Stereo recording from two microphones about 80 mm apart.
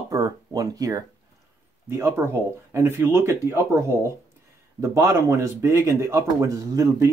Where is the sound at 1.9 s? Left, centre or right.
Right.